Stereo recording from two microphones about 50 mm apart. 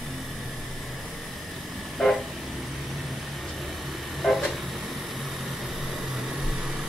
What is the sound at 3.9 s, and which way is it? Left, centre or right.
Vehicle, centre.